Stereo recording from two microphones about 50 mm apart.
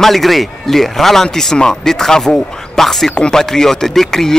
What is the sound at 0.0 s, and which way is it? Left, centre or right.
Speech, centre.